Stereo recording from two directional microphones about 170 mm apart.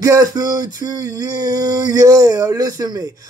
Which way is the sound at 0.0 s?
20° right (ahead or behind).